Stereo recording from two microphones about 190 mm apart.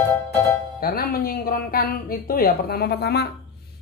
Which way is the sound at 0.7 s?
50° left (ahead or behind).